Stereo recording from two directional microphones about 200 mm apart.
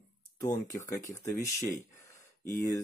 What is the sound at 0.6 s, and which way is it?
Speech, 15° left (ahead or behind).